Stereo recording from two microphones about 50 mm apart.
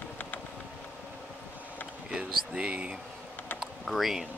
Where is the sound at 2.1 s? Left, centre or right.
Right.